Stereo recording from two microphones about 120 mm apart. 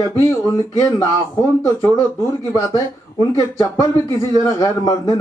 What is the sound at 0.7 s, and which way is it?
Speech, 25° left (ahead or behind).